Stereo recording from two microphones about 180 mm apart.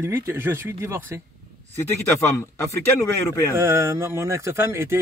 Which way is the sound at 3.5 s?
15° right (ahead or behind).